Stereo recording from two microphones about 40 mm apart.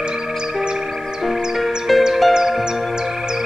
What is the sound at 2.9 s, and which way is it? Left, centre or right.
Music, centre.